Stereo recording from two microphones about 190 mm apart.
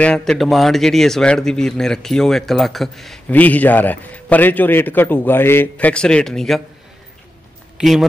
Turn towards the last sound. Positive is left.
turn(degrees=-5)  # may be behind; listen again after turning